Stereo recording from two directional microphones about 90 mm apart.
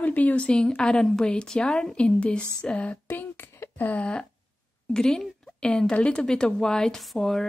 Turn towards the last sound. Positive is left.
turn(degrees=5)  # may be behind; listen again after turning